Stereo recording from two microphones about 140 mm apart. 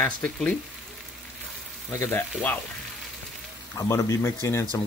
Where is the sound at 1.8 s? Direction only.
20° left (ahead or behind).